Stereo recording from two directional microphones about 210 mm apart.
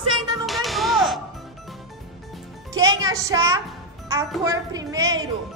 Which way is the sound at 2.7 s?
15° right (ahead or behind).